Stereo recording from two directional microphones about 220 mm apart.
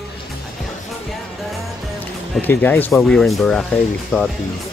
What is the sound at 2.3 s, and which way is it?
Speech, 10° left (ahead or behind).